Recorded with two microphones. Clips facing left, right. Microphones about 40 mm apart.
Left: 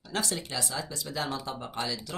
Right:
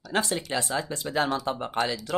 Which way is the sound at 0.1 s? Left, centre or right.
Right.